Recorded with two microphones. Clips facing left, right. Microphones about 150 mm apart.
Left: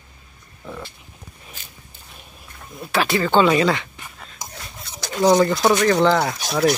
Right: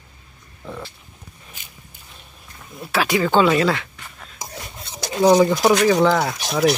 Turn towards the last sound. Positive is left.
turn(degrees=0)  # may be behind; listen again after turning